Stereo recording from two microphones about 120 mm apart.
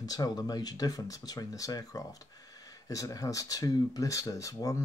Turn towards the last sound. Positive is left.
turn(degrees=30)  # may be behind; listen again after turning